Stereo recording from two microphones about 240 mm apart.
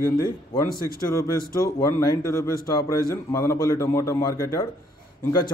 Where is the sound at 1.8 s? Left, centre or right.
Centre.